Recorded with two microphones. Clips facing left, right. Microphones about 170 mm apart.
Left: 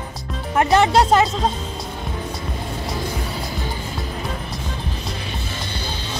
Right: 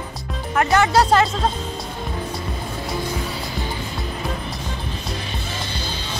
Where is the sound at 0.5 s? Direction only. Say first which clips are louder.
Left 2 dB; 25° left (ahead or behind).